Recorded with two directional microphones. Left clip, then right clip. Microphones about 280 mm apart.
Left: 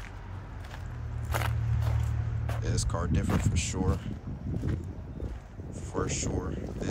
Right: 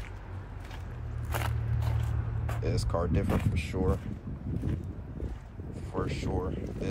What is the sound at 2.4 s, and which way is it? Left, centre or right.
Speech, centre.